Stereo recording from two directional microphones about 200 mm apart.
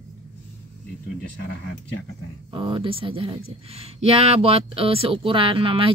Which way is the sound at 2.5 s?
25° right (ahead or behind).